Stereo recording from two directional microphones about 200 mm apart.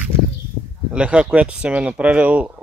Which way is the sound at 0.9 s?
5° right (ahead or behind).